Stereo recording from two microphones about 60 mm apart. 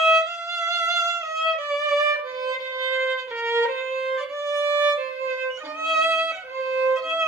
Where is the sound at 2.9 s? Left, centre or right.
Right.